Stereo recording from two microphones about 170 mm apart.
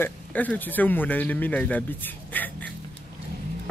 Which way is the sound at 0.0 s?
10° left (ahead or behind).